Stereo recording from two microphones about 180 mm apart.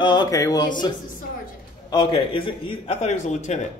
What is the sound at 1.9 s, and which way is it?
A man's voice, 25° left (ahead or behind).